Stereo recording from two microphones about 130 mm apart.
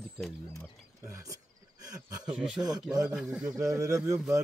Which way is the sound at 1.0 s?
25° right (ahead or behind).